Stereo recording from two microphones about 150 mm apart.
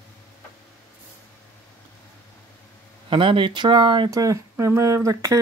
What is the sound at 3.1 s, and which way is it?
Speech, 35° right (ahead or behind).